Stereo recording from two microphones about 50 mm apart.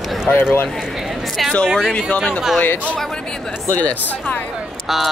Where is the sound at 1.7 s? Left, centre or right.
Centre.